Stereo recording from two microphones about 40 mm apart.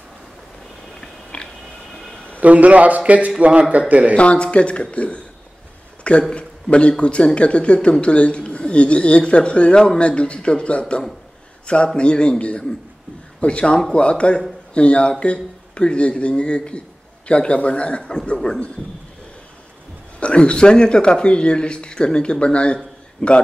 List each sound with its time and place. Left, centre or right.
1.0 s biting: left
2.4 s a man's voice: right
4.1 s speech: left
6.3 s a man's voice: left
20.2 s speech: left